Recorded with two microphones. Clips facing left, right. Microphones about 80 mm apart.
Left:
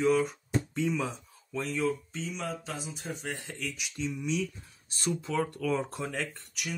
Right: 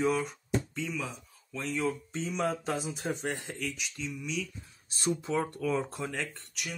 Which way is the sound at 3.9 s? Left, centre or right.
Left.